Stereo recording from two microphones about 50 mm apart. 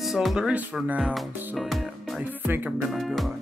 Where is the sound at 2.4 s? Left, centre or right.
Right.